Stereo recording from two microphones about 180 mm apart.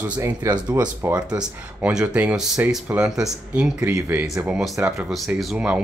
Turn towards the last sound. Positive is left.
turn(degrees=-5)  # may be behind; listen again after turning